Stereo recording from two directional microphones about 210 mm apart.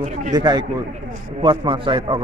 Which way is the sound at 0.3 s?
20° right (ahead or behind).